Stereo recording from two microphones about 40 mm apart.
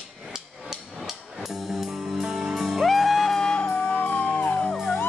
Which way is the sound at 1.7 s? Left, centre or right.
Centre.